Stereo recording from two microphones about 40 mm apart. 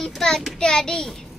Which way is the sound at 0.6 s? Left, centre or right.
Centre.